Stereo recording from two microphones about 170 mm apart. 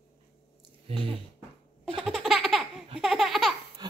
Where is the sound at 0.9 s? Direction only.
35° right (ahead or behind).